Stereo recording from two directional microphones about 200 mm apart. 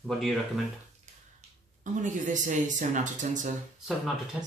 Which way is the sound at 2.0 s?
40° right (ahead or behind).